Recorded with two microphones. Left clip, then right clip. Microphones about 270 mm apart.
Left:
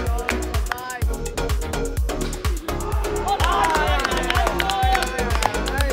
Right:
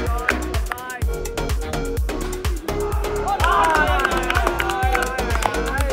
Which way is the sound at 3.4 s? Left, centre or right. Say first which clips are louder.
Right 4 dB; left.